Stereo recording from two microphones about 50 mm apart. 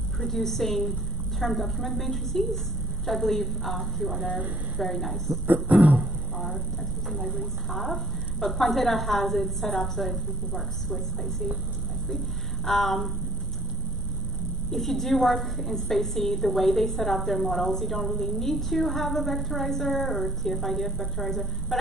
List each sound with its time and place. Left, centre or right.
0.2 s a woman's voice: centre
5.5 s guitar: right
7.1 s a woman's voice: centre
12.6 s a woman's voice: centre
14.7 s a woman's voice: centre